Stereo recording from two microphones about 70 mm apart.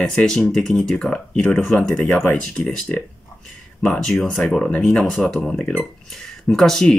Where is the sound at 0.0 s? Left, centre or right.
Centre.